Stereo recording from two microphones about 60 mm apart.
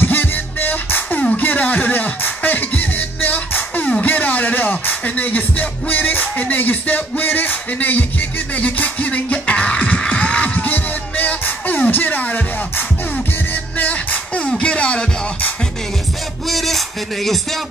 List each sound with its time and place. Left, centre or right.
0.0 s music: left
16.4 s music: centre